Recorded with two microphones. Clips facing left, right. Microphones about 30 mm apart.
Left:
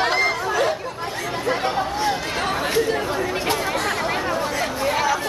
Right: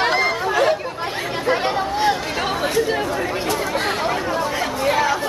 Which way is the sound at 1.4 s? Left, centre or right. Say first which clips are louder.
Right 3 dB; right.